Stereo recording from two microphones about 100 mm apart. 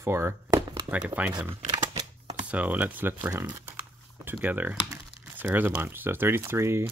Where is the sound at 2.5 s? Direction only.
15° right (ahead or behind).